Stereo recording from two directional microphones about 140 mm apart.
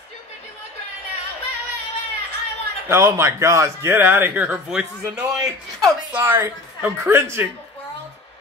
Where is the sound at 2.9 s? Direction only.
20° right (ahead or behind).